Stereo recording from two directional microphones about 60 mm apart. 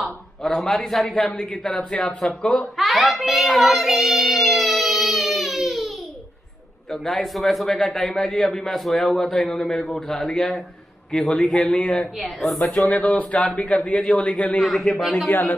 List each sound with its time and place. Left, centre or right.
0.5 s a man's voice: centre
2.6 s child singing: centre
6.9 s a man's voice: centre
12.2 s speech: centre
12.9 s a man's voice: left
14.6 s speech: centre
15.2 s speech: left